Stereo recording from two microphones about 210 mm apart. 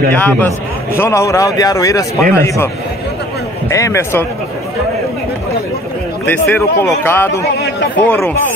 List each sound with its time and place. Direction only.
0.1 s speech: 10° left (ahead or behind)
3.7 s speech: 15° left (ahead or behind)
6.2 s speech: 10° left (ahead or behind)